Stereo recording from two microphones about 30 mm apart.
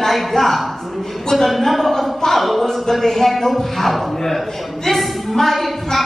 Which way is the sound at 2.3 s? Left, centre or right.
Centre.